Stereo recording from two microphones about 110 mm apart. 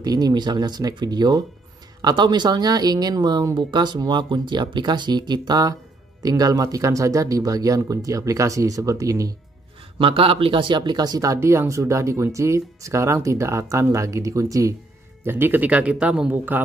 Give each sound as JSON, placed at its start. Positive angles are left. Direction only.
{"t": 0.0, "sound": "speech", "side_deg": -35}
{"t": 9.9, "sound": "speech", "side_deg": -55}